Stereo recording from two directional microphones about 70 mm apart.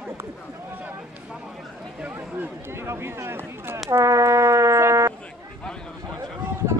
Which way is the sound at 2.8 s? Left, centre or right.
Right.